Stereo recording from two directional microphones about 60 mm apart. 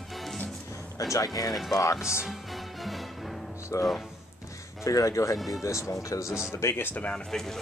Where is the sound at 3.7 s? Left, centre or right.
Left.